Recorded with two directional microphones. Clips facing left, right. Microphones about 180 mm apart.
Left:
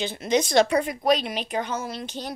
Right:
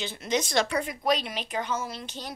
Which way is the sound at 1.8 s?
65° left (ahead or behind).